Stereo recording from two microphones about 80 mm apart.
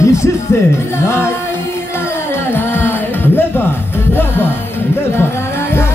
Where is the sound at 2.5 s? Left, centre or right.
Left.